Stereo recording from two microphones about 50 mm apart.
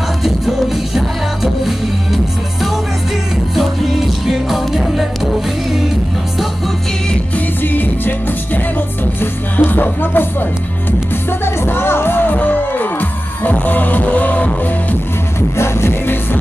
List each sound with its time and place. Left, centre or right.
0.9 s music: centre
3.5 s music: centre
7.3 s music: left
15.5 s music: left